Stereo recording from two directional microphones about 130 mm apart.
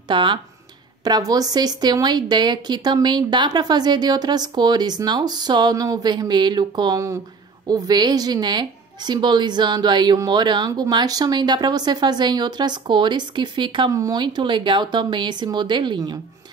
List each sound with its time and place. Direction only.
0.1 s a woman's voice: 40° right (ahead or behind)
1.0 s a woman's voice: 30° right (ahead or behind)